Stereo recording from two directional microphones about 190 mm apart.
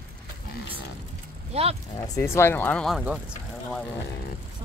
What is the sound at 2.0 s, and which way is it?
Speech, 15° left (ahead or behind).